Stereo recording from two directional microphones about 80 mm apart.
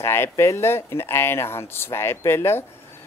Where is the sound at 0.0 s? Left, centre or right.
Left.